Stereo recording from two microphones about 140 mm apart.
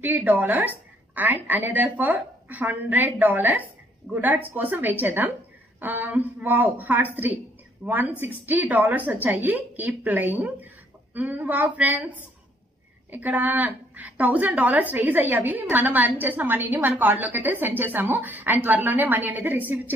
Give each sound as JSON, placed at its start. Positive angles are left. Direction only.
{"t": 0.0, "sound": "a woman's voice", "side_deg": -10}